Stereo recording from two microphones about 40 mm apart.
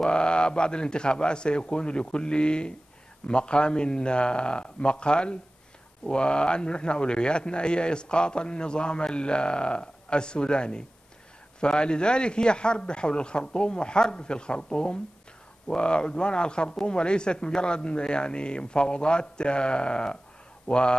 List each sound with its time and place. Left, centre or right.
0.0 s a man's voice: left